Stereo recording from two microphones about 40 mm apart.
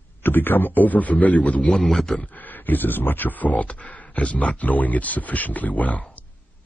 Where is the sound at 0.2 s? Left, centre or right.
Left.